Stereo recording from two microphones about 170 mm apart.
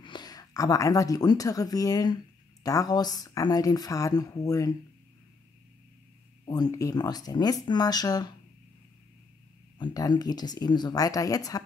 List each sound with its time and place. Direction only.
0.0 s speech: 25° left (ahead or behind)
6.4 s speech: 25° left (ahead or behind)
9.8 s speech: 25° left (ahead or behind)